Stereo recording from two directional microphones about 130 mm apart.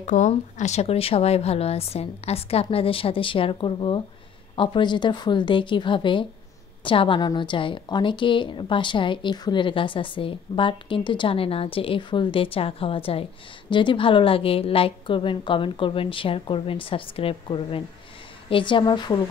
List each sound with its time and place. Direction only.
0.0 s speech: 70° left (ahead or behind)
0.3 s a woman's voice: 60° left (ahead or behind); by 19.2 s 35° left (ahead or behind)